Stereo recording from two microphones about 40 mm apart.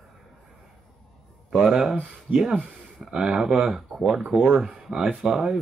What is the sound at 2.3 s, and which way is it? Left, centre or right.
Speech, right.